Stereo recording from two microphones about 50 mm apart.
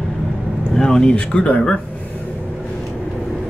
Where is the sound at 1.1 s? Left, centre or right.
Left.